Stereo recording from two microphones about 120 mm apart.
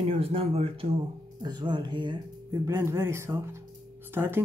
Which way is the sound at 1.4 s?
35° right (ahead or behind).